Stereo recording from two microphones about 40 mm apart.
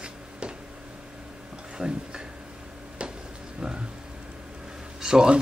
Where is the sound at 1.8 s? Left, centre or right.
Centre.